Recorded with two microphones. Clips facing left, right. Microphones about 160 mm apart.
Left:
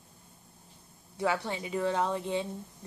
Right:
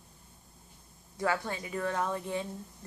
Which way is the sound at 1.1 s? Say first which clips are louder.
Left 1 dB; 20° left (ahead or behind).